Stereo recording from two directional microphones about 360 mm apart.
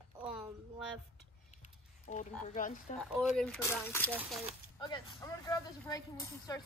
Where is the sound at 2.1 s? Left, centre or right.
Left.